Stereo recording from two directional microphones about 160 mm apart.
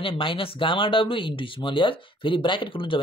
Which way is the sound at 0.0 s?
35° left (ahead or behind).